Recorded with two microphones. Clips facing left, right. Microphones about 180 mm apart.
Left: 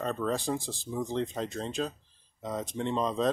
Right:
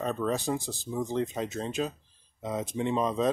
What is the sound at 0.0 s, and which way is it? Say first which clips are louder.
Speech: right 1 dB; 5° right (ahead or behind).